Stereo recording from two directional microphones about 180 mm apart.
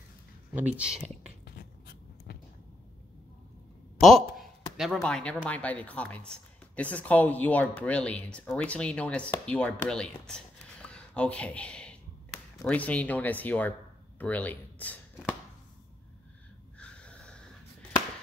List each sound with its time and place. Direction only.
0.6 s speech: 10° right (ahead or behind)
1.4 s a sound: 60° left (ahead or behind)
4.0 s speech: centre (ahead or behind)
16.7 s snort: 5° left (ahead or behind)